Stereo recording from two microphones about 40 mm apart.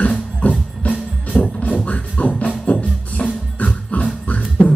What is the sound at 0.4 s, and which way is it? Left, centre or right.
Music, left.